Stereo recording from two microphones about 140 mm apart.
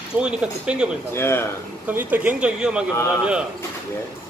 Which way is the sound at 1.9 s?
10° right (ahead or behind).